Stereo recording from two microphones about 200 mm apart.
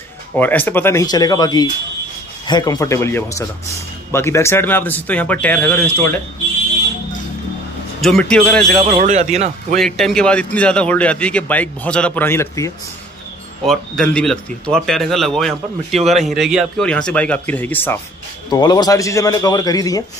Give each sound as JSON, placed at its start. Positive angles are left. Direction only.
{"t": 0.4, "sound": "speech", "side_deg": 10}
{"t": 8.0, "sound": "speech", "side_deg": 5}
{"t": 8.8, "sound": "speech", "side_deg": -35}
{"t": 9.8, "sound": "speech", "side_deg": 0}
{"t": 13.7, "sound": "speech", "side_deg": 5}
{"t": 16.0, "sound": "speech", "side_deg": -35}
{"t": 16.3, "sound": "speech", "side_deg": 0}
{"t": 18.5, "sound": "a man's voice", "side_deg": 20}